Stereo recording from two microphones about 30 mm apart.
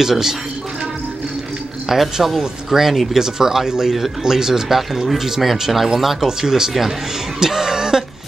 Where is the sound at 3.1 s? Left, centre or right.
Centre.